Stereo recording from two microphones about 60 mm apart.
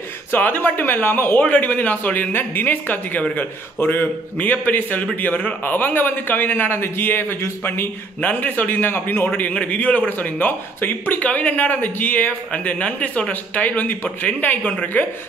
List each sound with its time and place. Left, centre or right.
0.3 s a man's voice: left
1.4 s a man's voice: left
8.2 s a man's voice: left